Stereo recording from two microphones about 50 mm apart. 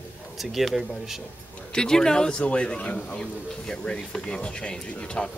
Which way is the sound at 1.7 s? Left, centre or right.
Centre.